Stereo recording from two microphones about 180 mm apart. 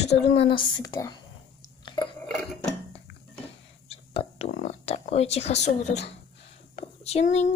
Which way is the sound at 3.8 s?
30° left (ahead or behind).